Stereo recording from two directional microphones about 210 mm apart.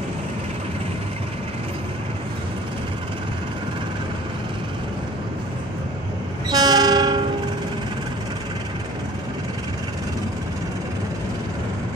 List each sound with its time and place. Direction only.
6.5 s train: 20° right (ahead or behind)